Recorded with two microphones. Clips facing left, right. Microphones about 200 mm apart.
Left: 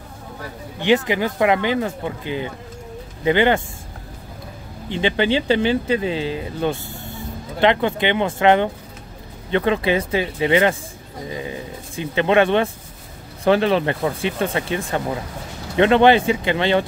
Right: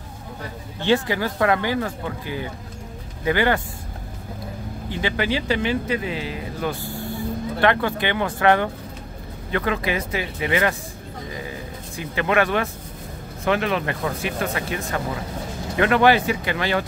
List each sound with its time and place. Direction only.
0.7 s speech: 15° left (ahead or behind)
4.8 s speech: 25° left (ahead or behind)